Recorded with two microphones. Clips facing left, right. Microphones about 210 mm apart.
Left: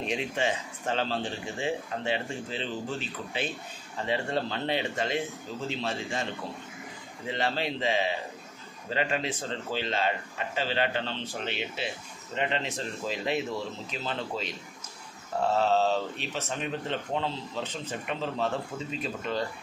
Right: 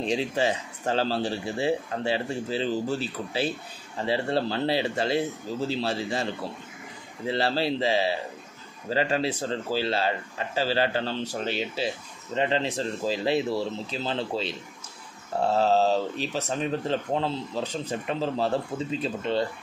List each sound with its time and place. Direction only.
0.0 s speech: 35° right (ahead or behind)
7.2 s speech: 35° right (ahead or behind)
15.5 s speech: 35° right (ahead or behind)